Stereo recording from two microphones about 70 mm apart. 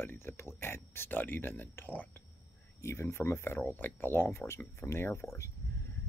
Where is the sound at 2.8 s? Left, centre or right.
Left.